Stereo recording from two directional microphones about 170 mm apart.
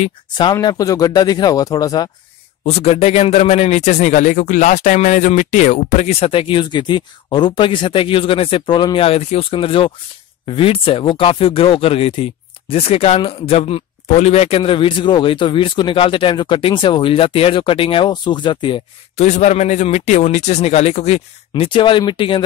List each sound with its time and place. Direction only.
0.4 s speech: 25° left (ahead or behind)
2.6 s speech: 35° left (ahead or behind)
19.1 s speech: 45° left (ahead or behind)